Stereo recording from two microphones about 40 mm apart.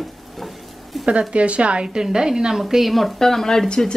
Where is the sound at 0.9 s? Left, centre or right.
Centre.